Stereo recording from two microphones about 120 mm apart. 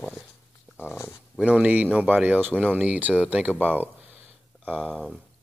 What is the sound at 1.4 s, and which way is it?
Speech, 10° right (ahead or behind).